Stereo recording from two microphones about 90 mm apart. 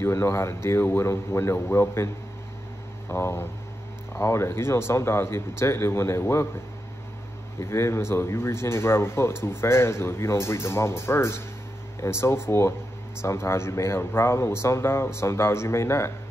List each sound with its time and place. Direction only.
0.0 s a man's voice: 30° left (ahead or behind)
3.1 s a man's voice: 30° left (ahead or behind)
7.5 s a man's voice: 30° left (ahead or behind)